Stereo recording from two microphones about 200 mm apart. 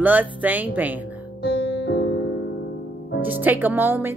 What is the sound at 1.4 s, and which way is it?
Music, 70° left (ahead or behind).